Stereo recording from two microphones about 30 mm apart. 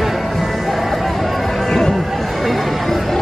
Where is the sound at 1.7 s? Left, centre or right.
Centre.